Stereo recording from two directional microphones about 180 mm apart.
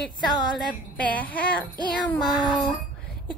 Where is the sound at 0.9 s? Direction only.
10° left (ahead or behind).